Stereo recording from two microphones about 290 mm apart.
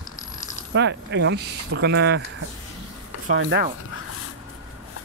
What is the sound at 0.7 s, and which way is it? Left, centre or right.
Speech, right.